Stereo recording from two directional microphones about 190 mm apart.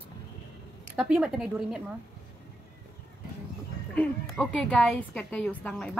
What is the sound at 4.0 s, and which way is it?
A woman's voice, 5° left (ahead or behind).